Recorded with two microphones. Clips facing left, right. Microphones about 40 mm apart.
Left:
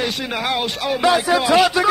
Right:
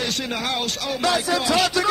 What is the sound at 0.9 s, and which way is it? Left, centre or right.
Speech, left.